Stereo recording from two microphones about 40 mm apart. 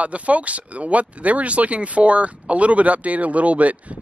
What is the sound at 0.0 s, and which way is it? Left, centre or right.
Speech, right.